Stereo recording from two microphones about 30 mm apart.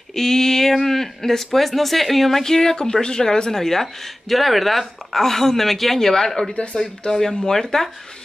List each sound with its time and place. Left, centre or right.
0.1 s speech: centre
6.5 s speech: left
7.1 s speech: centre